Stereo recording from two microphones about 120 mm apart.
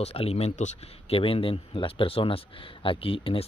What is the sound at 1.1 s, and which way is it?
A man's voice, 50° left (ahead or behind).